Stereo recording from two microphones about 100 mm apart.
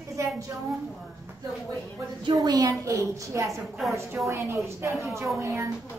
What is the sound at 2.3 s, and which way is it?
A woman's voice, 40° right (ahead or behind).